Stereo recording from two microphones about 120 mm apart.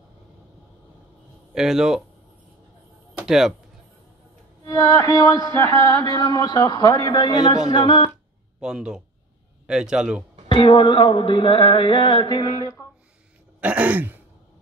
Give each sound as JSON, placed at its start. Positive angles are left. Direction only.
{"t": 1.5, "sound": "speech", "side_deg": -5}
{"t": 3.3, "sound": "speech", "side_deg": -5}
{"t": 4.6, "sound": "music", "side_deg": 30}
{"t": 7.7, "sound": "speech", "side_deg": 40}
{"t": 8.5, "sound": "a man's voice", "side_deg": -5}
{"t": 10.5, "sound": "music", "side_deg": 40}
{"t": 13.6, "sound": "throat clearing", "side_deg": -10}